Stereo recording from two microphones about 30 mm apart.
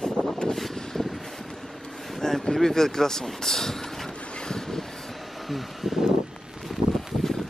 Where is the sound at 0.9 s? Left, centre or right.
Centre.